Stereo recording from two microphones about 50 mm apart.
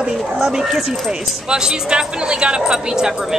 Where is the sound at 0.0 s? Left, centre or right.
Centre.